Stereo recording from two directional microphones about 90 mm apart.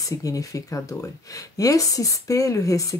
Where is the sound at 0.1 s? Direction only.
40° left (ahead or behind).